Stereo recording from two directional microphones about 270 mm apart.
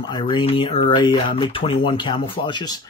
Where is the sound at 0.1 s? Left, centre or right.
Centre.